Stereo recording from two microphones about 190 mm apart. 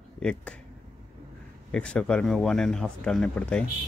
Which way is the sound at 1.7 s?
5° left (ahead or behind).